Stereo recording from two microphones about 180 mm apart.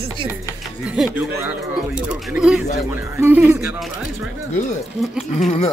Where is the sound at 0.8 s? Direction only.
5° right (ahead or behind).